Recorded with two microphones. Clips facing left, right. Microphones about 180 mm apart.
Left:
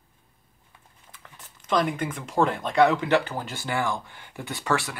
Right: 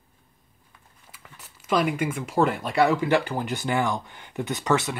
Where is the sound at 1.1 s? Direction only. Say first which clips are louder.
Even; 10° right (ahead or behind).